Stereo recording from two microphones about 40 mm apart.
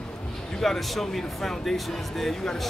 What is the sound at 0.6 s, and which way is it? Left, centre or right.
Speech, centre.